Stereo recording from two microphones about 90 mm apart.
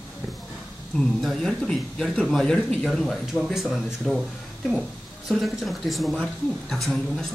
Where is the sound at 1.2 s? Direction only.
5° left (ahead or behind).